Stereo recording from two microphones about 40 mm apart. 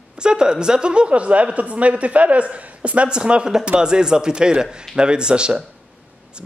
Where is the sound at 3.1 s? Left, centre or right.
Right.